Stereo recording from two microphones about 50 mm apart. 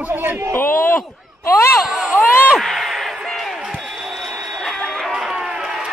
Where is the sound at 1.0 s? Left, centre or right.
Left.